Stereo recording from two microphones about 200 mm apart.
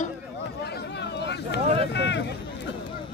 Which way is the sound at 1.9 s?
60° left (ahead or behind).